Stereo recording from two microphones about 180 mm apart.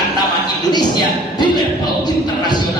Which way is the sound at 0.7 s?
25° left (ahead or behind).